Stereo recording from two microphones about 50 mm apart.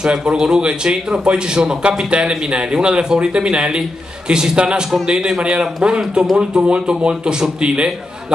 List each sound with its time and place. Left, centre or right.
0.0 s a man's voice: centre